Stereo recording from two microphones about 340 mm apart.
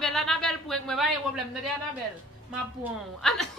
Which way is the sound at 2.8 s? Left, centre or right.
Centre.